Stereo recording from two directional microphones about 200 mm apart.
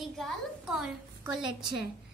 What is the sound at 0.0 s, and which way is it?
A woman's voice, centre (ahead or behind).